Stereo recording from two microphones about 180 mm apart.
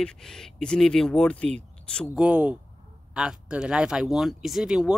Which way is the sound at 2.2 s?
5° right (ahead or behind).